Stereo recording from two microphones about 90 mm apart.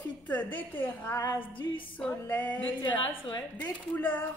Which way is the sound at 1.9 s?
15° left (ahead or behind).